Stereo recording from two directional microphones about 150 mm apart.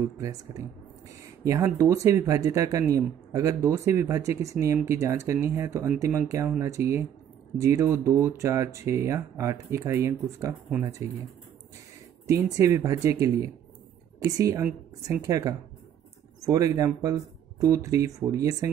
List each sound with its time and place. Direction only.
0.2 s speech: 20° right (ahead or behind)
12.3 s speech: 20° right (ahead or behind)